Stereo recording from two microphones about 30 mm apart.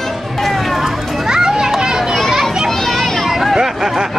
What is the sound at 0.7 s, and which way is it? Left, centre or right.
Children playing, centre.